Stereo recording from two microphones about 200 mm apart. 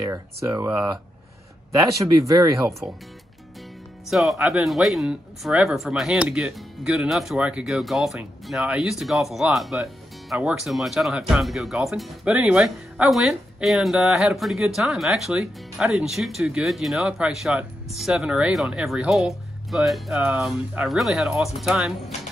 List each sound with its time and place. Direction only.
0.0 s speech: 15° right (ahead or behind)
4.1 s speech: centre (ahead or behind)